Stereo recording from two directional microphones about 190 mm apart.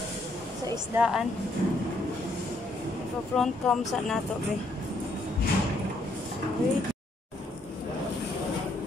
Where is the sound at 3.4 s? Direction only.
Centre (ahead or behind).